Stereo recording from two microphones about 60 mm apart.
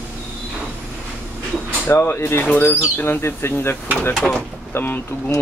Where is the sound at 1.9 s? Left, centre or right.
Left.